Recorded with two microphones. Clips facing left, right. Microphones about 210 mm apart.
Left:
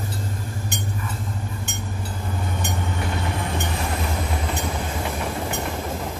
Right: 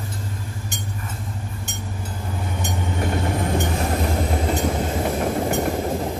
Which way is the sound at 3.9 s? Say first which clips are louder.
Right 5 dB; 40° right (ahead or behind).